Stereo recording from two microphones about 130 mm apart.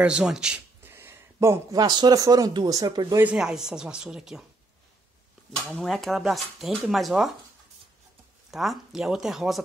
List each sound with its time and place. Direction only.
0.0 s speech: 5° right (ahead or behind)
0.8 s speech: 15° right (ahead or behind)
3.2 s speech: 10° right (ahead or behind)
5.8 s speech: centre (ahead or behind)
8.5 s speech: centre (ahead or behind)